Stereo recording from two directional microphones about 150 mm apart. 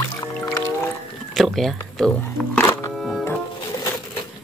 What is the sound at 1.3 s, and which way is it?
Music, centre (ahead or behind).